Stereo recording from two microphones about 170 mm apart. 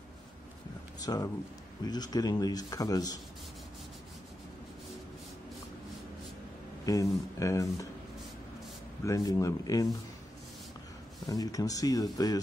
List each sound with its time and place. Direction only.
1.0 s speech: 20° left (ahead or behind)
6.9 s speech: 20° left (ahead or behind)
9.0 s speech: 20° left (ahead or behind)
11.2 s speech: 20° left (ahead or behind)